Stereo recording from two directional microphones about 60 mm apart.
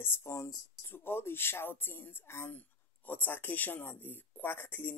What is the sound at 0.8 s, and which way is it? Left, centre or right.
Speech, left.